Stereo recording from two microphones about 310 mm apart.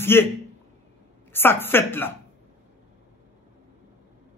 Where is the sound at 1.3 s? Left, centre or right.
Centre.